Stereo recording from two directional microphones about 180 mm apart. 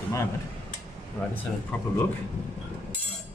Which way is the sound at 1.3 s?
10° left (ahead or behind).